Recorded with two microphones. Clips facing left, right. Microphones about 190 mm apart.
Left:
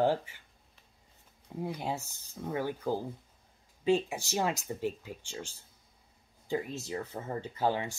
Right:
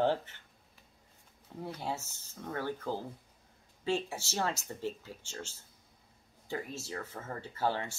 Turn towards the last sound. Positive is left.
turn(degrees=15)  # may be behind; listen again after turning